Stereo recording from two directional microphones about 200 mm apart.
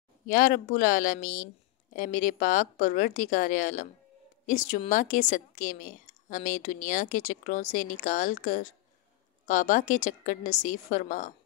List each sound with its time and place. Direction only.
0.3 s a woman's voice: 40° left (ahead or behind)